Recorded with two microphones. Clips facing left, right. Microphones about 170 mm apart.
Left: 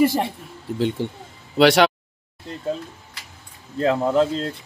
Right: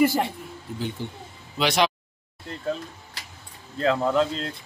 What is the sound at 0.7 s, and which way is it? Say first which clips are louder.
Speech: left 9 dB; 75° left (ahead or behind).